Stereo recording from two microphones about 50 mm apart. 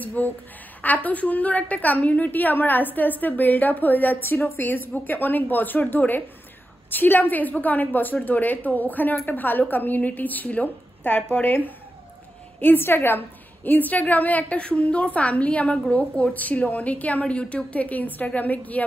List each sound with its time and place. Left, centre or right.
0.0 s a woman's voice: left
13.7 s a woman's voice: left
14.6 s a woman's voice: left